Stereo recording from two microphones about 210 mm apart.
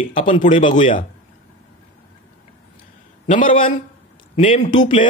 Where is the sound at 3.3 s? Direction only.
40° left (ahead or behind).